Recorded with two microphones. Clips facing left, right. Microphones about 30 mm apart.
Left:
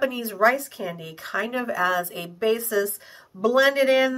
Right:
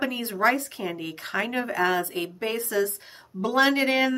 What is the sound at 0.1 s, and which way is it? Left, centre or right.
Speech, right.